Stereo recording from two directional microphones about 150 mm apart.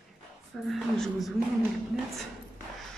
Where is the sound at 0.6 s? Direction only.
Centre (ahead or behind).